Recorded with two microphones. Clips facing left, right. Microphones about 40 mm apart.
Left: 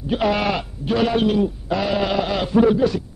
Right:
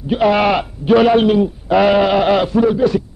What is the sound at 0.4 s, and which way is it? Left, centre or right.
A man's voice, right.